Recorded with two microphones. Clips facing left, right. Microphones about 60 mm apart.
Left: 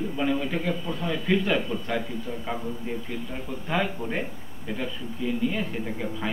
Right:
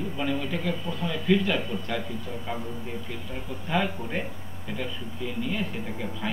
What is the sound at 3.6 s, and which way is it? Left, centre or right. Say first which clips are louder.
Speech: even; centre.